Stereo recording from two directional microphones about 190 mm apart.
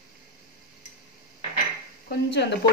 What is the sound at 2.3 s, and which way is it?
Speech, 65° left (ahead or behind).